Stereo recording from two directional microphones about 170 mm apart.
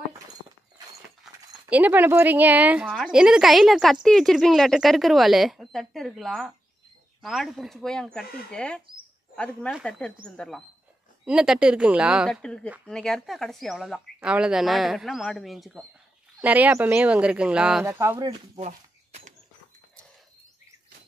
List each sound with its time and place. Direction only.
1.3 s clip-clop: centre (ahead or behind)
1.7 s a woman's voice: 10° right (ahead or behind)
17.8 s speech: 15° right (ahead or behind)
18.6 s a sound: 40° right (ahead or behind)